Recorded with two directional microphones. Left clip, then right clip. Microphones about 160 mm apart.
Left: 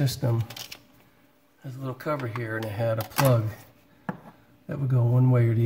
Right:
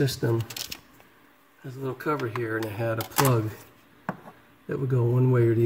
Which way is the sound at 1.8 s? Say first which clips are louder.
Right 2 dB; 60° left (ahead or behind).